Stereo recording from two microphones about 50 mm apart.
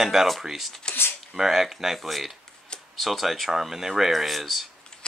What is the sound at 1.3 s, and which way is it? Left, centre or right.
Speech, centre.